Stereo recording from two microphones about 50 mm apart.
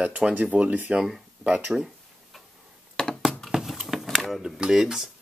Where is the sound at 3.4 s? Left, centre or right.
Centre.